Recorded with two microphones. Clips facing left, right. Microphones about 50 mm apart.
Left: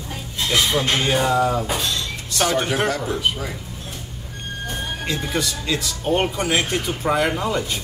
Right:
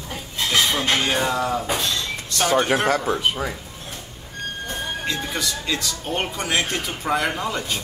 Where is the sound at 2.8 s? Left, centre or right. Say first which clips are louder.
Right 2 dB; right.